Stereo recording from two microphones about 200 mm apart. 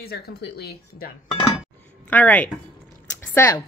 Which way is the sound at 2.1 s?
10° left (ahead or behind).